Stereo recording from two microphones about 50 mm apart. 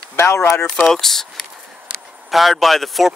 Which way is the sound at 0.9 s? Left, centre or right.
Centre.